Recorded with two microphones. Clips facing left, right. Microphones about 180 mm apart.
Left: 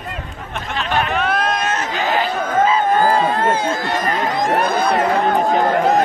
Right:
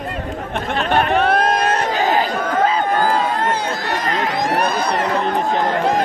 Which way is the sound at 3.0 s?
50° left (ahead or behind).